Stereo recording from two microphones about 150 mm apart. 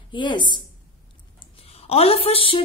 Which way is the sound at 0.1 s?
30° left (ahead or behind).